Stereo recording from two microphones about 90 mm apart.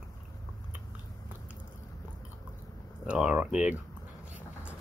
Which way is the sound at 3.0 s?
10° right (ahead or behind).